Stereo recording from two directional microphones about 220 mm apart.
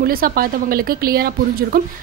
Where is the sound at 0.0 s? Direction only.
40° right (ahead or behind).